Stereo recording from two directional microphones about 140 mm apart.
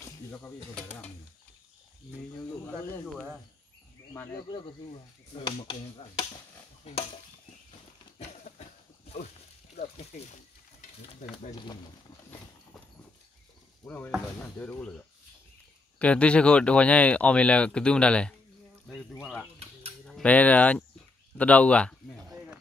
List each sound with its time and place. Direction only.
0.3 s speech: 10° left (ahead or behind)
4.1 s speech: 20° left (ahead or behind)
4.4 s speech: 35° left (ahead or behind)
6.8 s stir: 50° left (ahead or behind)
8.2 s a sound: 55° left (ahead or behind)
9.8 s speech: 50° left (ahead or behind)
11.5 s speech: 30° left (ahead or behind)
13.8 s speech: 15° left (ahead or behind)
20.1 s speech: 5° left (ahead or behind)
22.3 s a sound: 15° right (ahead or behind)